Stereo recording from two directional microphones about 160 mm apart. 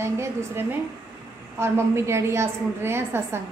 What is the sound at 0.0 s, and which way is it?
A woman's voice, 15° right (ahead or behind).